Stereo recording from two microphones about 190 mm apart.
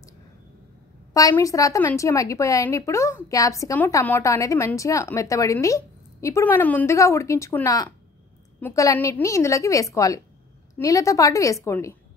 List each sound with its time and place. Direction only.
1.1 s a woman's voice: 15° left (ahead or behind)